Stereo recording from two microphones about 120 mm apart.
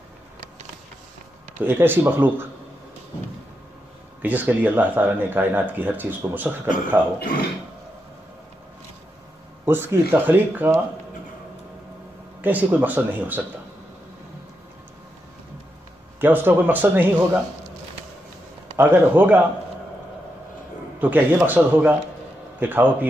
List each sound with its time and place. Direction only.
1.6 s speech: 15° right (ahead or behind)
4.2 s speech: 15° right (ahead or behind)
9.7 s speech: 20° right (ahead or behind)
12.4 s speech: 15° right (ahead or behind)
16.2 s speech: 15° right (ahead or behind)
18.8 s speech: 15° right (ahead or behind)
21.0 s speech: 15° right (ahead or behind)